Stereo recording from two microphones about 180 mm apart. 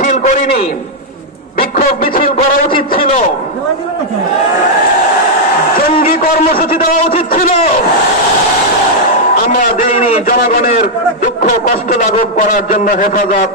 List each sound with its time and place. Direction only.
0.0 s a man's voice: 45° left (ahead or behind)
1.6 s a sound: 55° left (ahead or behind)
6.0 s a man's voice: 50° left (ahead or behind)
10.0 s a man's voice: 35° left (ahead or behind)
11.4 s a man's voice: 50° left (ahead or behind)